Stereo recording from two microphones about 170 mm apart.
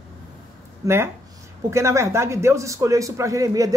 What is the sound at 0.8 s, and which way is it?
A man's voice, 15° right (ahead or behind).